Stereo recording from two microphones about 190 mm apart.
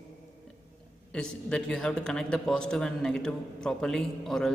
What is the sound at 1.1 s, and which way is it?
A man's voice, 5° left (ahead or behind).